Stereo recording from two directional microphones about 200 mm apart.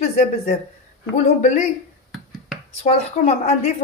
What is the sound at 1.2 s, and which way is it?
Speech, 35° left (ahead or behind).